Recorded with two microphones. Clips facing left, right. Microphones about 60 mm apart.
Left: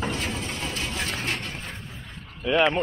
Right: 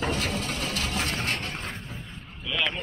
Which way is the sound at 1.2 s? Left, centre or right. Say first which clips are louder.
Even; centre.